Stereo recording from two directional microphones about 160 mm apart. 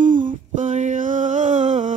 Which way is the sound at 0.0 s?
55° right (ahead or behind).